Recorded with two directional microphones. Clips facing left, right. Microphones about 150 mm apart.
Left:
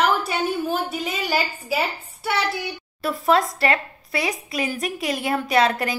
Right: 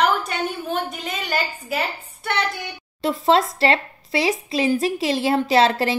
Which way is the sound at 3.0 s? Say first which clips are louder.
Right 2 dB; 25° right (ahead or behind).